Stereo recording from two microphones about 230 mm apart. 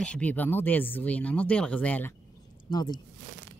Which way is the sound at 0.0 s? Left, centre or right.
Centre.